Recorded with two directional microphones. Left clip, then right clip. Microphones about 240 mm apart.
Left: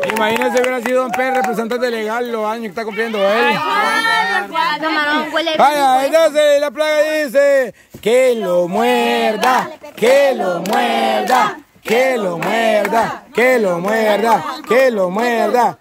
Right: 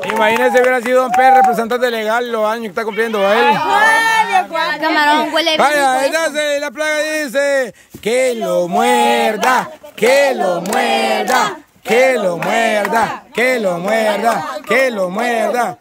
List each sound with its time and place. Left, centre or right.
0.2 s speech: centre
3.7 s a sound: right
4.8 s speech: right
5.6 s speech: centre
11.1 s speech: right
11.9 s speech: centre